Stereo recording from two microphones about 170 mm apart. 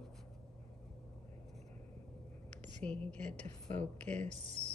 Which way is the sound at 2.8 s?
5° left (ahead or behind).